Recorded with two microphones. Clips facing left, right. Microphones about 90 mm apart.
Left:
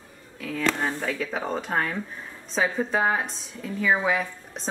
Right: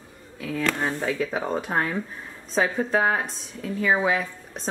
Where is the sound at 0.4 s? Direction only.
5° right (ahead or behind).